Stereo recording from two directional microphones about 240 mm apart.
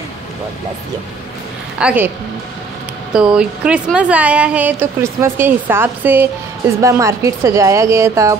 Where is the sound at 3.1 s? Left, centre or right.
Centre.